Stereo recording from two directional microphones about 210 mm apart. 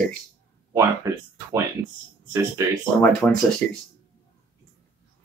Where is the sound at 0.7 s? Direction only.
15° right (ahead or behind).